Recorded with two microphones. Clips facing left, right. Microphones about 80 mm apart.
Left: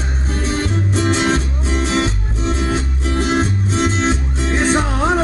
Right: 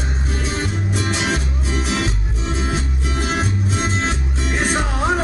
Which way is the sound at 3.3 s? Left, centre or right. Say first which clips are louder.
Left 3 dB; left.